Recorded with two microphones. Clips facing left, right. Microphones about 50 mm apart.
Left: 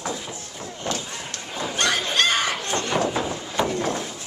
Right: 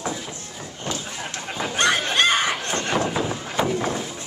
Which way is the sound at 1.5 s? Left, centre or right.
Right.